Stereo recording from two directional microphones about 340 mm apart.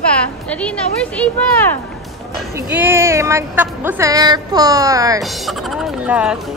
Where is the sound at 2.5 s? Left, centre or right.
Centre.